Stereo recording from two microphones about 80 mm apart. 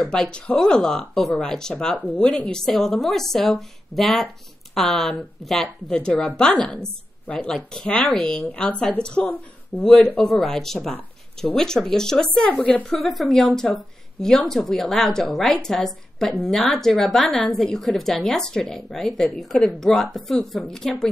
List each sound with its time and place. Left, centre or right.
0.0 s a woman's voice: centre
10.2 s a woman's voice: centre
13.1 s a woman's voice: centre